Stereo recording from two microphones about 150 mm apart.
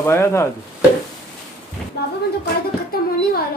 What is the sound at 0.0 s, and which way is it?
Chopping, 20° left (ahead or behind).